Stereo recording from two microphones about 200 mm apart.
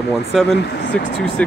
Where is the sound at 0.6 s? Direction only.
60° left (ahead or behind).